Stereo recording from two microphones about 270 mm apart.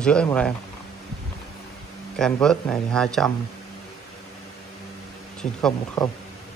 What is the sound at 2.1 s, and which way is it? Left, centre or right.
Speech, centre.